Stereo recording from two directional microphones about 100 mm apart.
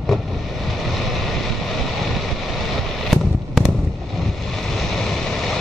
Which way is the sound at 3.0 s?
Centre (ahead or behind).